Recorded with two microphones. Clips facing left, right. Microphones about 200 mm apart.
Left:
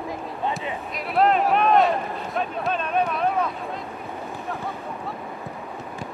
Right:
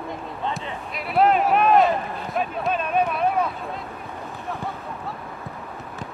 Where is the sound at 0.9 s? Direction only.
Centre (ahead or behind).